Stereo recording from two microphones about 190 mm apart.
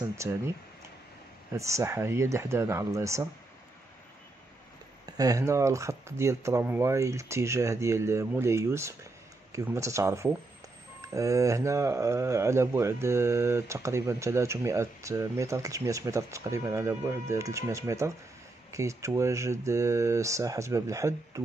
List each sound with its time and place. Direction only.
0.0 s a sound: 15° right (ahead or behind)
1.5 s speech: 15° right (ahead or behind)
5.0 s speech: 20° right (ahead or behind)